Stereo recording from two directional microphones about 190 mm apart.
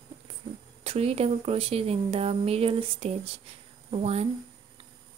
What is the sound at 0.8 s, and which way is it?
A woman's voice, 30° right (ahead or behind).